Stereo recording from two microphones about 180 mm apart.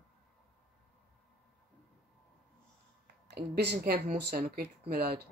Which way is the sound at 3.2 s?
65° right (ahead or behind).